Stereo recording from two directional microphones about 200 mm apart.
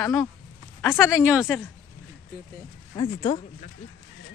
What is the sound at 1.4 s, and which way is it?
Speech, 10° left (ahead or behind).